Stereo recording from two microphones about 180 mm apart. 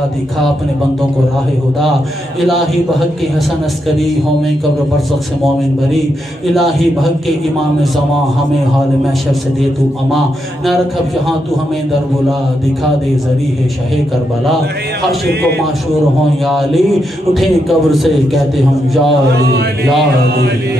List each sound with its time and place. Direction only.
2.4 s speech: centre (ahead or behind)
6.5 s speech: centre (ahead or behind)
10.1 s speech: centre (ahead or behind)
16.4 s speech: centre (ahead or behind)
19.3 s mantra: 65° right (ahead or behind)